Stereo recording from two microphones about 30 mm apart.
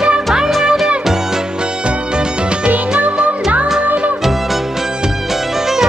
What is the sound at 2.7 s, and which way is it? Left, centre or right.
Music, right.